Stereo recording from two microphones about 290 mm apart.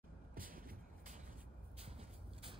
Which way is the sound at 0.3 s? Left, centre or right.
Right.